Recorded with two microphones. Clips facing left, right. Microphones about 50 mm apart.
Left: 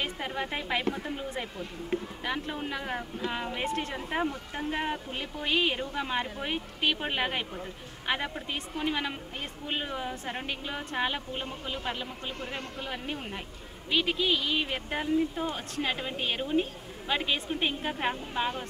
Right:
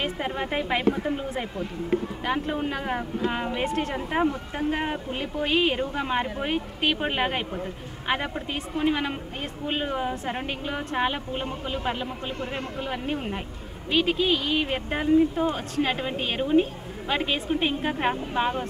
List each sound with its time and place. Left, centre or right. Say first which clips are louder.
0.0 s a woman's voice: right 4 dB; centre